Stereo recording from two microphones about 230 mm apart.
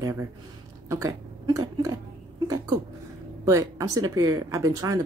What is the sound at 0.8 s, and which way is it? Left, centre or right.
Speech, centre.